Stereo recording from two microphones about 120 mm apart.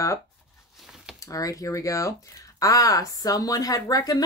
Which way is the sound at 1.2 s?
30° left (ahead or behind).